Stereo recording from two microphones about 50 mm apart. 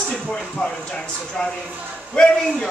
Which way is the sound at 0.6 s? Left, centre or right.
Centre.